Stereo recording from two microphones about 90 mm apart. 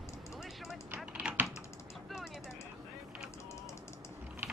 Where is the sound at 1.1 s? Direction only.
15° right (ahead or behind).